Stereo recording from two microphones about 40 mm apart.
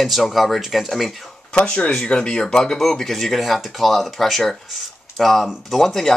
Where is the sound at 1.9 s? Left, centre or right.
Left.